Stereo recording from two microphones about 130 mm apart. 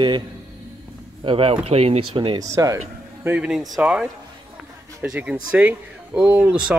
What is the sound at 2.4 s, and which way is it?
Speech, 25° right (ahead or behind).